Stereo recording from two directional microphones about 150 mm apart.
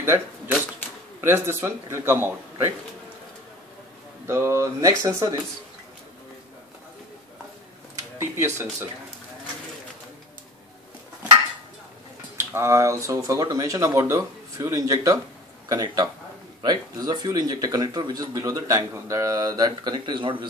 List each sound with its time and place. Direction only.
0.0 s a man's voice: 15° right (ahead or behind)
4.3 s speech: 15° right (ahead or behind)
8.2 s a man's voice: 15° right (ahead or behind)
12.4 s speech: 20° right (ahead or behind)